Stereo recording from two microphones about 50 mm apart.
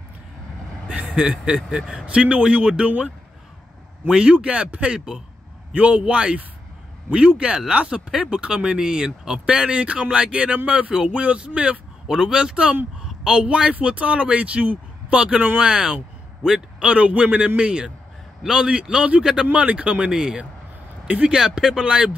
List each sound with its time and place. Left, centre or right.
0.8 s speech: right
4.1 s speech: right
10.9 s speech: centre
12.1 s speech: centre
20.1 s speech: centre
21.4 s speech: centre